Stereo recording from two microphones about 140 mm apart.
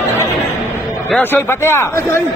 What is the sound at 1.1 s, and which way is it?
Speech, 15° left (ahead or behind).